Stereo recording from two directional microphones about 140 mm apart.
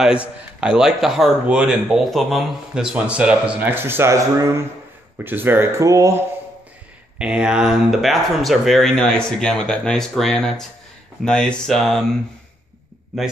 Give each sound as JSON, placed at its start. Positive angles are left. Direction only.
{"t": 0.0, "sound": "speech", "side_deg": -5}
{"t": 7.2, "sound": "speech", "side_deg": -5}